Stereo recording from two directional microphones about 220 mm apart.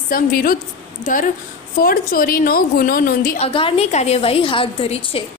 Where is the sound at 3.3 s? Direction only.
25° left (ahead or behind).